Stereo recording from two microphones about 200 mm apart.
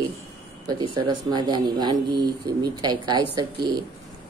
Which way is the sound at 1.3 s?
20° right (ahead or behind).